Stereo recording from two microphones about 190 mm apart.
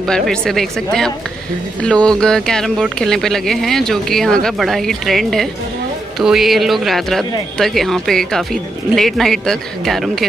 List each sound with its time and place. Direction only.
0.0 s speech: 5° left (ahead or behind)